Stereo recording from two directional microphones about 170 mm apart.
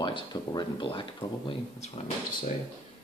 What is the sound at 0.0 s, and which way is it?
Speech, 25° left (ahead or behind).